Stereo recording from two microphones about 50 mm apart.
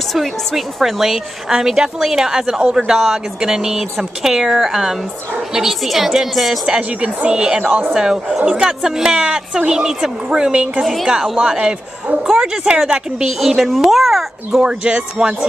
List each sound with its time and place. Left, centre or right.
0.1 s a woman's voice: centre
6.7 s a woman's voice: right
10.8 s a woman's voice: centre
11.1 s a woman's voice: centre
14.6 s a woman's voice: centre